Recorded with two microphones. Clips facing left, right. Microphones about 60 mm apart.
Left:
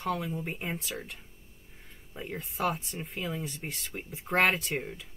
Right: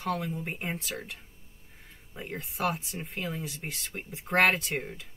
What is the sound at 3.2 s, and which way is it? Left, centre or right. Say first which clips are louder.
Speech: even; right.